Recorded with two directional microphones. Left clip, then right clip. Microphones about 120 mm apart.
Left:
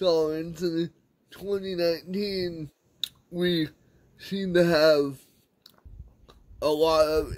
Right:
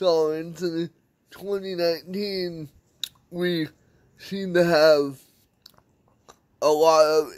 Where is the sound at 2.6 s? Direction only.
20° left (ahead or behind).